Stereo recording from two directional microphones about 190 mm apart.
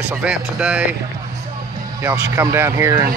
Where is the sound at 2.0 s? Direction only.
15° right (ahead or behind).